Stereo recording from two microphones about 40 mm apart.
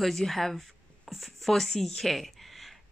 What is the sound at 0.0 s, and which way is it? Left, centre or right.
A woman's voice, centre.